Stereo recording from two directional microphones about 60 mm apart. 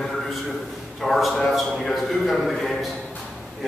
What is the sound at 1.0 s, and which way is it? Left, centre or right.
A man's voice, centre.